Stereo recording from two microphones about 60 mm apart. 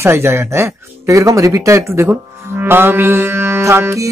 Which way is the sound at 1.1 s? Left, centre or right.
Right.